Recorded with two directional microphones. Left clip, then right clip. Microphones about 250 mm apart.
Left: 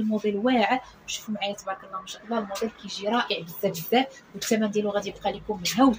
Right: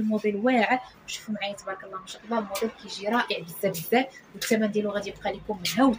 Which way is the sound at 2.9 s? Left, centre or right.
Centre.